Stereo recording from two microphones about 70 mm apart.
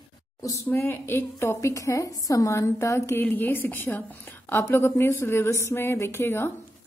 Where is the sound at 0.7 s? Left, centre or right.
Left.